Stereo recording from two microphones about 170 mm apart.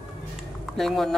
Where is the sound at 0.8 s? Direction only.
Centre (ahead or behind).